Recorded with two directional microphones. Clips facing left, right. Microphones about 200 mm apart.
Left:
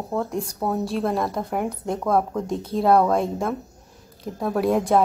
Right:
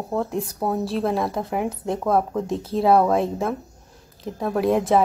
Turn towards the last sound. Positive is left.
turn(degrees=0)  # may be behind; listen again after turning